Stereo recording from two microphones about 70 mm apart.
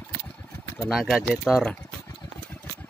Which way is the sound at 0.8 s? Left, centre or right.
Centre.